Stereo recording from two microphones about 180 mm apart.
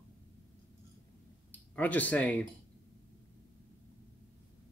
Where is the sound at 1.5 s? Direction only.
10° left (ahead or behind).